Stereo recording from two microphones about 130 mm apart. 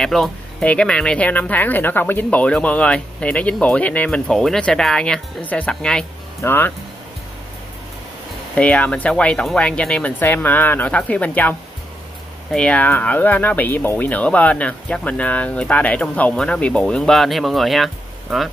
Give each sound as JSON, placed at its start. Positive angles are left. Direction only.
{"t": 0.0, "sound": "speech", "side_deg": 5}
{"t": 8.5, "sound": "speech", "side_deg": 10}
{"t": 12.5, "sound": "speech", "side_deg": 10}